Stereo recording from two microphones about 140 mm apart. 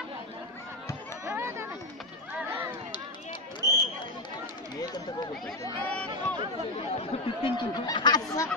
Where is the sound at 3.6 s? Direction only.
25° left (ahead or behind).